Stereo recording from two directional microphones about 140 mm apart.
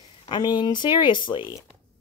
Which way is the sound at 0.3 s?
30° left (ahead or behind).